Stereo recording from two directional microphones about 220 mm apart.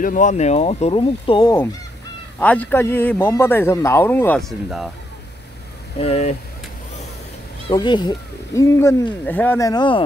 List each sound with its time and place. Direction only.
0.0 s speech: 35° left (ahead or behind); by 1.7 s 20° left (ahead or behind)
2.3 s speech: 5° left (ahead or behind)
5.9 s speech: 30° left (ahead or behind)
7.7 s speech: 20° left (ahead or behind)